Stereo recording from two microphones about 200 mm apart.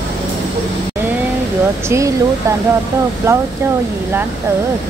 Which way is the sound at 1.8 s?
15° right (ahead or behind).